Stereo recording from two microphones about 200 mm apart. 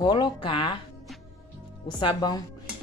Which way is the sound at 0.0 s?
20° left (ahead or behind).